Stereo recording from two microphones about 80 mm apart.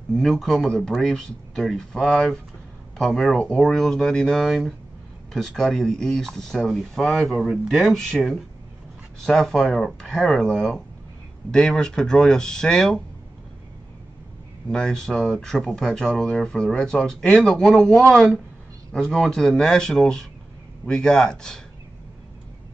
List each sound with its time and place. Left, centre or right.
0.1 s speech: centre
14.7 s speech: centre